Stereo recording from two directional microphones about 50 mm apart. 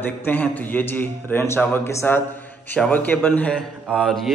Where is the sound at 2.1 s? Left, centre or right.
Left; by 4.1 s centre.